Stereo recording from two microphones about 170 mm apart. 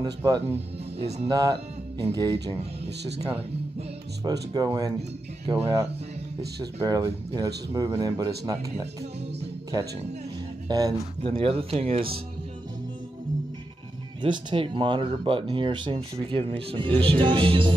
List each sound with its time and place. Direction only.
0.0 s speech: 25° right (ahead or behind)
0.9 s speech: 35° right (ahead or behind)
1.3 s speech: 20° right (ahead or behind)
4.2 s speech: 20° right (ahead or behind)
6.9 s speech: 20° right (ahead or behind)
10.7 s speech: 25° right (ahead or behind)
14.2 s speech: 30° right (ahead or behind)